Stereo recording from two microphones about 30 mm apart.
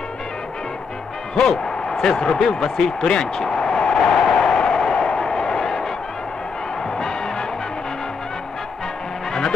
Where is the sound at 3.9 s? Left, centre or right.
Centre.